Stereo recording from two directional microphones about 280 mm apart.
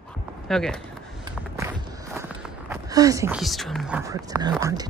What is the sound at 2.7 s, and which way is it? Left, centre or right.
Speech, centre.